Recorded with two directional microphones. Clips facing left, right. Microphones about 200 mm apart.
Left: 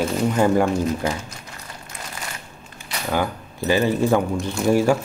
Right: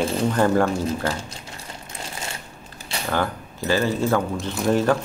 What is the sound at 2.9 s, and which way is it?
Camera, 30° right (ahead or behind).